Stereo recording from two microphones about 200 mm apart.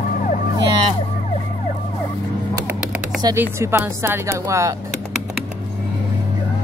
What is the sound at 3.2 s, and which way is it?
Speech, 15° right (ahead or behind).